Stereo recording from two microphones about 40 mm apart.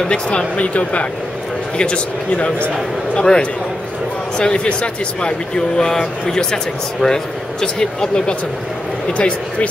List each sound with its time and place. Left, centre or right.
0.0 s speech: left
0.6 s speech: left
9.1 s speech: left